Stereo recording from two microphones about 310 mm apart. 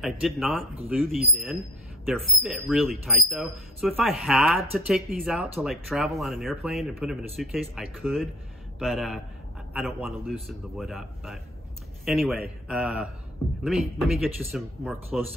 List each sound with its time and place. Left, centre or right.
0.0 s speech: centre